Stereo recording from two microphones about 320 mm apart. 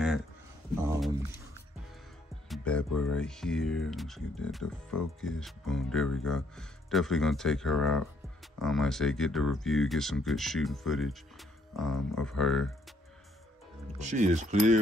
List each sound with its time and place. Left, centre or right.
0.7 s speech: centre
2.5 s speech: centre
13.9 s speech: right